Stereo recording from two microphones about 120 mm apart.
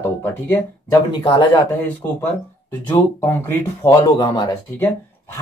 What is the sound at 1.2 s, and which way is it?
Speech, 40° left (ahead or behind).